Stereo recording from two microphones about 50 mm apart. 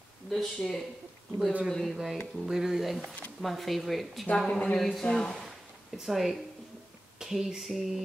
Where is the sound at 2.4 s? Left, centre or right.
Centre.